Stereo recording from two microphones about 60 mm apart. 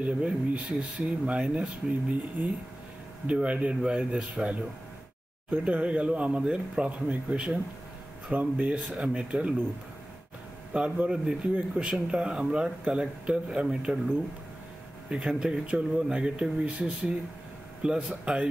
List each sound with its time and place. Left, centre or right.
0.0 s speech: right
5.6 s speech: right
10.7 s speech: centre